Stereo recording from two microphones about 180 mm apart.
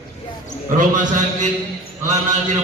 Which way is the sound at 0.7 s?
45° right (ahead or behind).